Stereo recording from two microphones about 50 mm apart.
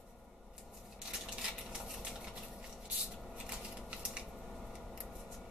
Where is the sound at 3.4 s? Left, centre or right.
Centre.